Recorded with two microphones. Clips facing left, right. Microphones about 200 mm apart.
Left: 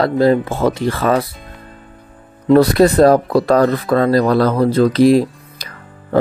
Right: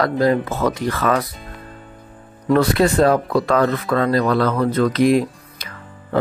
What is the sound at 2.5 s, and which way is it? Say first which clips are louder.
Speech: left 5 dB; 35° left (ahead or behind).